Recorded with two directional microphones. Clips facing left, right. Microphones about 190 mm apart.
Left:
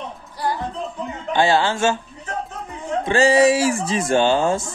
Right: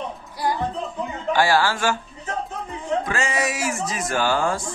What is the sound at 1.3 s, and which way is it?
Speech, 20° left (ahead or behind).